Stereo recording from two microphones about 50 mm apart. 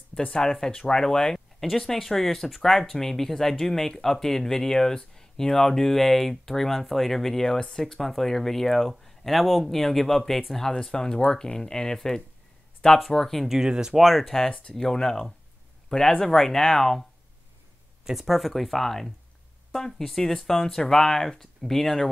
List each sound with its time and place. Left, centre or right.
0.3 s speech: centre
13.5 s speech: centre
13.9 s speech: centre
14.5 s speech: left
14.8 s speech: centre
18.0 s speech: centre